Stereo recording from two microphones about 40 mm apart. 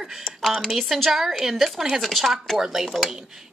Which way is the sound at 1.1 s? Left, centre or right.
Centre.